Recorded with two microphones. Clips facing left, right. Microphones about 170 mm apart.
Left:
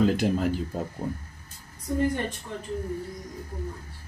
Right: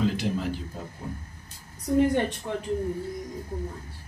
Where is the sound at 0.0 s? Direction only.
50° left (ahead or behind).